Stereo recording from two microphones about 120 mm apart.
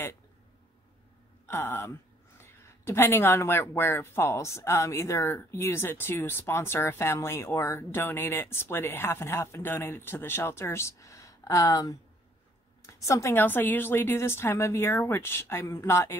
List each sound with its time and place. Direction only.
1.4 s a woman's voice: 20° left (ahead or behind)